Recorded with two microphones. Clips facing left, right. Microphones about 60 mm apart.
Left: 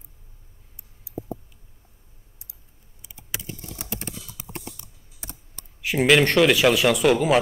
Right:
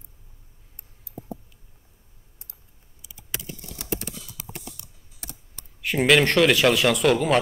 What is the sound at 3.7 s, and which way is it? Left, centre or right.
Typing, left.